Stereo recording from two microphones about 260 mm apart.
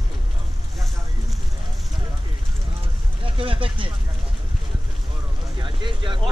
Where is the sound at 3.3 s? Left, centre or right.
Right.